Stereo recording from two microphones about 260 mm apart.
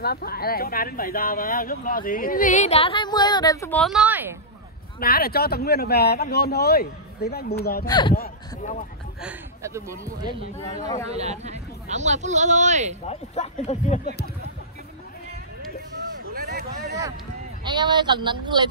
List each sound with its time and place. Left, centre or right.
0.0 s speech: left; by 4.4 s centre
5.0 s speech: left
7.8 s speech: centre
8.1 s speech: left
9.2 s speech: centre
10.8 s speech: centre
11.1 s speech: right
13.0 s speech: left
16.3 s a sound: right
17.6 s speech: centre